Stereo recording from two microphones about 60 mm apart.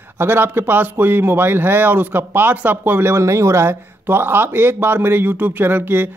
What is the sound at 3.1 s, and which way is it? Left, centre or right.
Speech, right.